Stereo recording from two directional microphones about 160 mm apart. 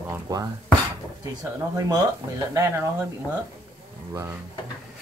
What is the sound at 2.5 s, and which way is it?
Speech, 15° right (ahead or behind).